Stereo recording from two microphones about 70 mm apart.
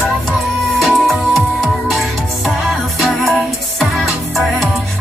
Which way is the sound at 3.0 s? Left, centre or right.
Centre.